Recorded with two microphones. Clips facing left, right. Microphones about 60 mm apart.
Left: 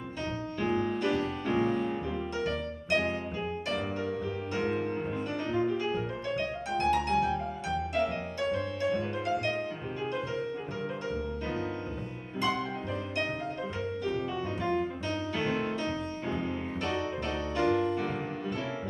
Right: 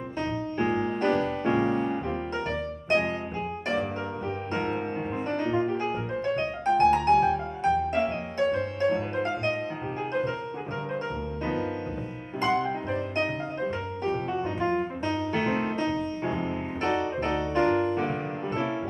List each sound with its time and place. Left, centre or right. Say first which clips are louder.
0.6 s music: right 3 dB; right
5.3 s music: right 4 dB; right
12.4 s music: right 5 dB; right
16.9 s music: right 7 dB; right